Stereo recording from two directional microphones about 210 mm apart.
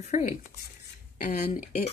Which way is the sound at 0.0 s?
35° left (ahead or behind).